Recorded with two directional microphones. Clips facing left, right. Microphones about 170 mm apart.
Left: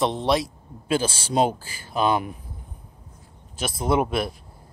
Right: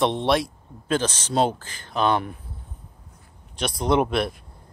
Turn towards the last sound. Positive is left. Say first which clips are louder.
# right 1 dB
turn(degrees=0)  # may be behind; listen again after turning